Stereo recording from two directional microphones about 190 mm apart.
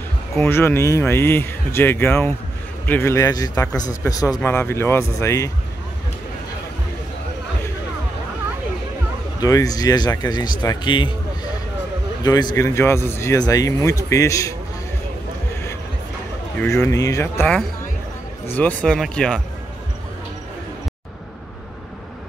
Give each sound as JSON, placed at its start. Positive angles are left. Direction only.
{"t": 0.4, "sound": "speech", "side_deg": 10}
{"t": 9.4, "sound": "speech", "side_deg": 20}
{"t": 16.7, "sound": "speech", "side_deg": 15}
{"t": 18.5, "sound": "speech", "side_deg": 10}